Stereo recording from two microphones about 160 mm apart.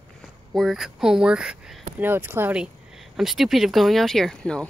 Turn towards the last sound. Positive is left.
turn(degrees=5)  # may be behind; listen again after turning